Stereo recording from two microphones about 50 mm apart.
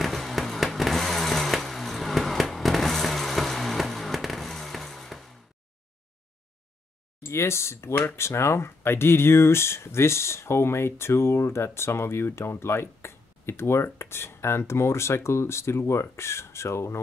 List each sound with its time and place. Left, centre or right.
0.0 s vehicle: centre
0.7 s chainsaw: centre
7.2 s speech: left